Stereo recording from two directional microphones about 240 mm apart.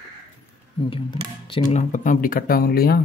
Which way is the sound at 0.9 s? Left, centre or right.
Left.